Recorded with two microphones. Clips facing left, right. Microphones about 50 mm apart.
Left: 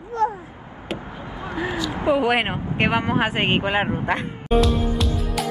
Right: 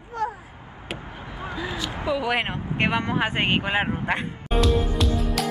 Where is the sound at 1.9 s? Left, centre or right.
Left; by 5.5 s centre.